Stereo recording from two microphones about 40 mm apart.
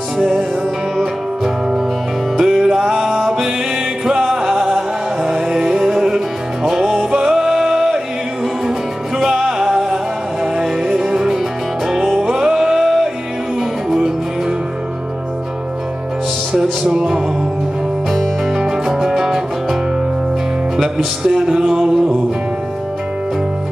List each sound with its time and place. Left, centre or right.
0.2 s music: centre
9.2 s music: centre
16.8 s music: centre
18.5 s music: centre